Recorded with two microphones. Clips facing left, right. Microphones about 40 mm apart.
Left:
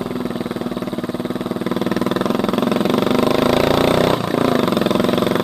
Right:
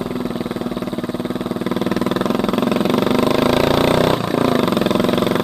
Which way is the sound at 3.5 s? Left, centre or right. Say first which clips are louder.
Even; right.